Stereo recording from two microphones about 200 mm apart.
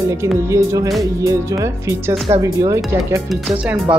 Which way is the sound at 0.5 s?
15° right (ahead or behind).